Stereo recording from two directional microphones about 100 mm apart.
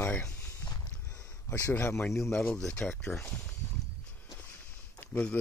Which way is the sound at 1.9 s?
Centre (ahead or behind).